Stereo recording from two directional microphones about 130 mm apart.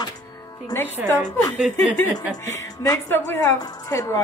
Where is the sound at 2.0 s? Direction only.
20° left (ahead or behind).